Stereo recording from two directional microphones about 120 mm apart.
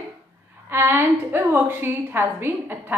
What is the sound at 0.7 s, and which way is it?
A woman's voice, 20° right (ahead or behind).